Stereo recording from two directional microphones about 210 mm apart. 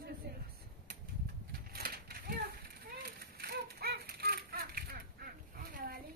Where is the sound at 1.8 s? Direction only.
45° right (ahead or behind).